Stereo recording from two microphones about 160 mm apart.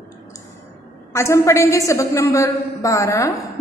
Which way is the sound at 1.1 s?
20° left (ahead or behind).